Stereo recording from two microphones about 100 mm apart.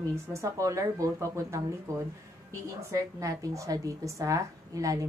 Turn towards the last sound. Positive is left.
turn(degrees=-35)  # may be behind; listen again after turning